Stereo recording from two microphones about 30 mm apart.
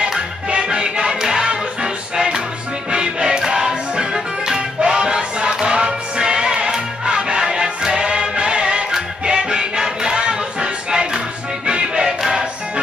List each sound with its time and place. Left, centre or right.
0.6 s music: right